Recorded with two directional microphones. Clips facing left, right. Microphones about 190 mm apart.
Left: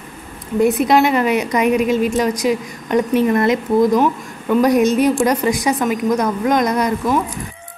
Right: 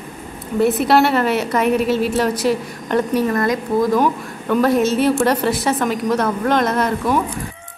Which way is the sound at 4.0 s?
10° left (ahead or behind).